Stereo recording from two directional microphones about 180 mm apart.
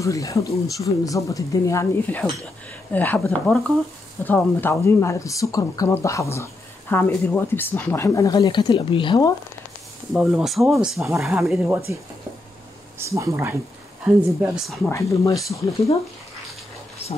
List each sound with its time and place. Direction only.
0.0 s speech: 15° left (ahead or behind)
10.1 s speech: centre (ahead or behind)
13.0 s speech: 15° right (ahead or behind)
14.0 s speech: 5° right (ahead or behind)
14.9 s speech: 15° left (ahead or behind)